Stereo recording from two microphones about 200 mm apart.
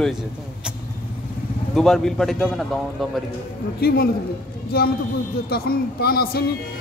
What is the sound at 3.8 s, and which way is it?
A man's voice, 50° left (ahead or behind).